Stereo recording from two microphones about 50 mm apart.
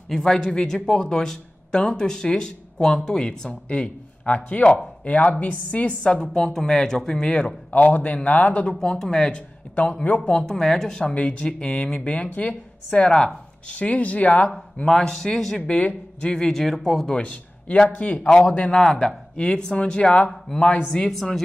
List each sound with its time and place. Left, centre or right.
0.1 s speech: centre; by 6.2 s left
6.3 s speech: centre
7.7 s speech: left
8.6 s speech: centre
9.8 s speech: left
10.4 s speech: centre
11.1 s speech: left
11.4 s speech: centre
12.1 s speech: left
14.8 s speech: centre
15.6 s speech: left
16.4 s speech: centre
17.2 s speech: left
18.9 s speech: centre